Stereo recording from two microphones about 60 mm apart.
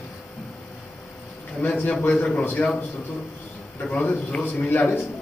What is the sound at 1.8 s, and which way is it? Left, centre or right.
A man's voice, left.